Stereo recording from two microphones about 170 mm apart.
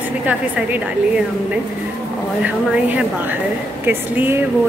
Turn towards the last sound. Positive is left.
turn(degrees=-10)  # may be behind; listen again after turning